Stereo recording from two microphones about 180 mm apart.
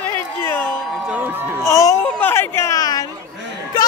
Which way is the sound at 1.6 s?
15° left (ahead or behind).